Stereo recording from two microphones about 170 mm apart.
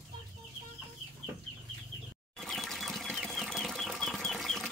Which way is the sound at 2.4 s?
Centre (ahead or behind).